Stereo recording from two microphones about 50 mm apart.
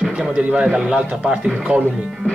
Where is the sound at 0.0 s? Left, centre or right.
Centre.